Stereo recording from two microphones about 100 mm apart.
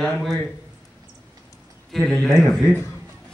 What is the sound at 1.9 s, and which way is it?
Speech, 5° left (ahead or behind).